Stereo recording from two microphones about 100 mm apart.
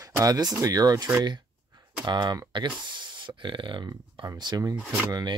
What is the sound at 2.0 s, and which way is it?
Speech, 45° right (ahead or behind).